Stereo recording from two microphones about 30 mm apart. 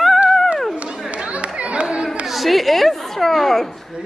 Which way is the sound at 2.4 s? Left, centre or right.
Centre.